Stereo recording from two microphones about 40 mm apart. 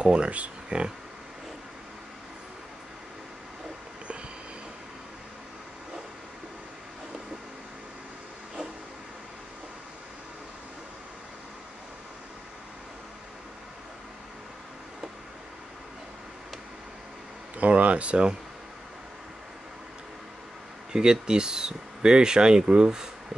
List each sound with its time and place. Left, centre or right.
0.0 s speech: right
17.6 s a sound: right
20.9 s speech: centre